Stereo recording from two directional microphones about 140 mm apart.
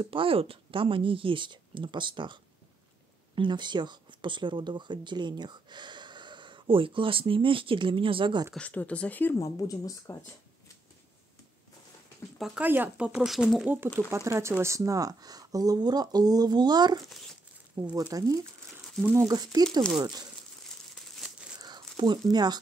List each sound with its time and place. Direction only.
0.0 s speech: 40° right (ahead or behind)
8.5 s speech: 10° left (ahead or behind)
9.4 s speech: 25° left (ahead or behind)
12.4 s speech: centre (ahead or behind)
12.6 s speech: 15° right (ahead or behind)
13.9 s speech: 20° right (ahead or behind)
17.8 s speech: 15° right (ahead or behind)
18.7 s a sound: centre (ahead or behind)
19.1 s speech: 25° right (ahead or behind)
20.6 s crumpling: centre (ahead or behind)
21.5 s crumpling: 30° right (ahead or behind)
22.3 s speech: 30° right (ahead or behind)